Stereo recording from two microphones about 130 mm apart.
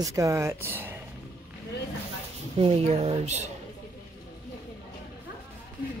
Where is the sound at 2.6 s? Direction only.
50° right (ahead or behind).